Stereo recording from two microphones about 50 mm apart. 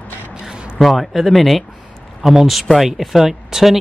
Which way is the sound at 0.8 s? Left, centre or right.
Centre.